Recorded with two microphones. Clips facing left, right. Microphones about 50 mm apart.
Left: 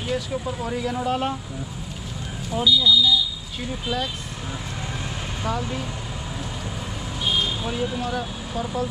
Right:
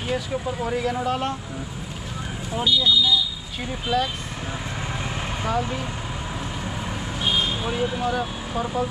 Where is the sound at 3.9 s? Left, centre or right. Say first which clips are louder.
Right 5 dB; centre.